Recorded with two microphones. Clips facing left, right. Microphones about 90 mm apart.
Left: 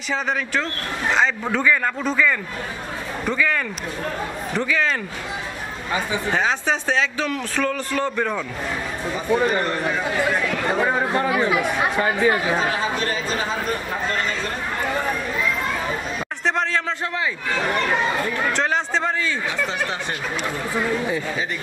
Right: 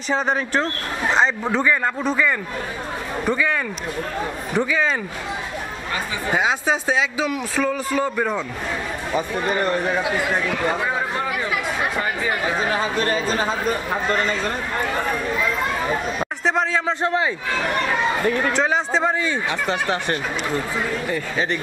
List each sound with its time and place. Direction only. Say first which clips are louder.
0.1 s speech: right 3 dB; 35° right (ahead or behind)
1.5 s a man's voice: even; 20° right (ahead or behind)
4.6 s speech: right 2 dB; 15° right (ahead or behind)
6.3 s speech: right 2 dB; 10° right (ahead or behind)
11.2 s speech: left 4 dB; 25° left (ahead or behind)
16.4 s speech: right 1 dB; 5° right (ahead or behind)
17.0 s a man's voice: right 5 dB; 30° right (ahead or behind)
18.5 s a man's voice: right 2 dB; 5° right (ahead or behind)
19.7 s speech: right 4 dB; 60° right (ahead or behind)